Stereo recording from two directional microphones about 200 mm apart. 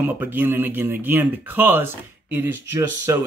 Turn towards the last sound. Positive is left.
turn(degrees=-15)  # may be behind; listen again after turning